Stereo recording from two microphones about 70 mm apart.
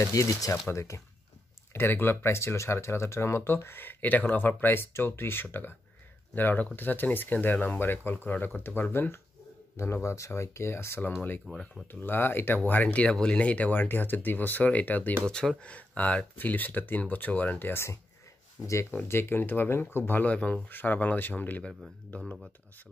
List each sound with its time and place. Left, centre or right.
0.0 s speech: left
1.7 s speech: left
11.5 s speech: centre
11.9 s speech: left
15.2 s speech: centre; by 17.8 s left
18.6 s speech: left
19.0 s speech: left